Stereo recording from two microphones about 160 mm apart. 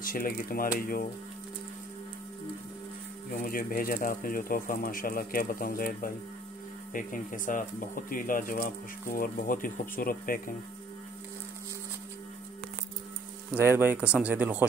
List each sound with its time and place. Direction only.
0.0 s speech: 60° left (ahead or behind)
3.3 s speech: 60° left (ahead or behind)
13.6 s speech: 15° right (ahead or behind)